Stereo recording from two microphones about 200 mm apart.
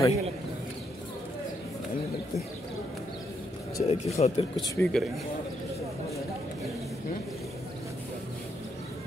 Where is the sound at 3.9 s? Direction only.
30° left (ahead or behind).